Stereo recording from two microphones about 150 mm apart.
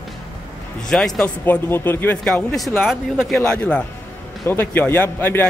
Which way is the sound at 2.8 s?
Centre (ahead or behind).